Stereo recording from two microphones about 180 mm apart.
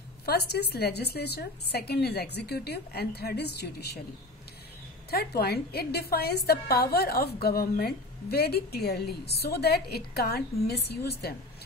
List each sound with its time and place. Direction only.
0.2 s a woman's voice: 60° left (ahead or behind)
5.1 s a woman's voice: 60° left (ahead or behind)